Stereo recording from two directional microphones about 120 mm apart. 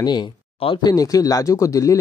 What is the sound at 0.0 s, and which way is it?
Speech, 35° left (ahead or behind).